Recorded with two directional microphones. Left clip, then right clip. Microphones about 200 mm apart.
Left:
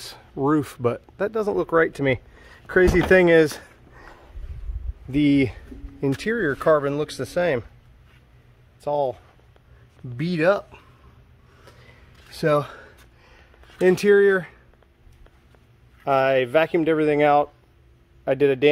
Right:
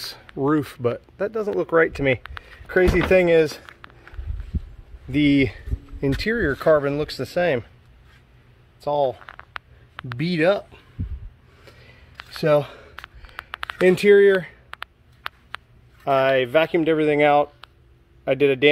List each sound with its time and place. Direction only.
0.0 s speech: centre (ahead or behind); by 3.4 s 25° left (ahead or behind)
5.1 s speech: centre (ahead or behind)
8.8 s speech: 5° right (ahead or behind)
11.6 s a sound: 5° right (ahead or behind)
13.7 s speech: 5° right (ahead or behind)
16.0 s speech: centre (ahead or behind)